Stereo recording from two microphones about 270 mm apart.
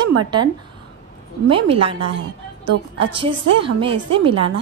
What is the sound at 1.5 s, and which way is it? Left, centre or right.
Speech, centre.